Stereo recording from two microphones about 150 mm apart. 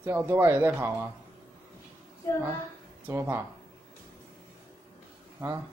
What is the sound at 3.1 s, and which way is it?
Speech, 15° right (ahead or behind).